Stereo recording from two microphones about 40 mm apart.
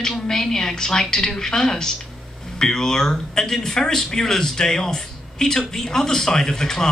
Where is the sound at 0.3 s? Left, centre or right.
Centre.